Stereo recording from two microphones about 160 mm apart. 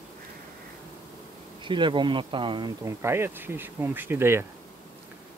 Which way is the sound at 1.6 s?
30° right (ahead or behind).